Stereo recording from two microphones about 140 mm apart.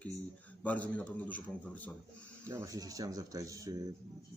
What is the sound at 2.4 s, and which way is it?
Speech, 20° right (ahead or behind).